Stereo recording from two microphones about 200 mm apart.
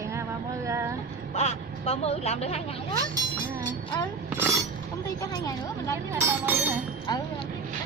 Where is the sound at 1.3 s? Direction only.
30° left (ahead or behind).